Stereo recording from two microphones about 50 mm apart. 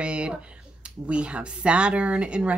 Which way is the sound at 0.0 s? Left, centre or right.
Right.